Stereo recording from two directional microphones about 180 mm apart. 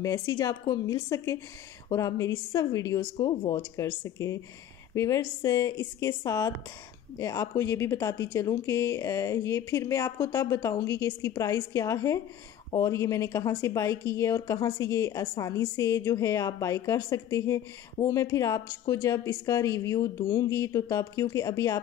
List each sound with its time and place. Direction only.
0.0 s a woman's voice: 20° left (ahead or behind)